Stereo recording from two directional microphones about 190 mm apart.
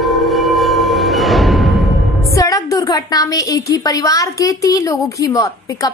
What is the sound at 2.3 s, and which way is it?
A woman's voice, 15° left (ahead or behind).